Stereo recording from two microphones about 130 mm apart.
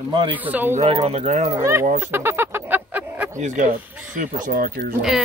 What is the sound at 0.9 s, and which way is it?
Speech, 50° right (ahead or behind).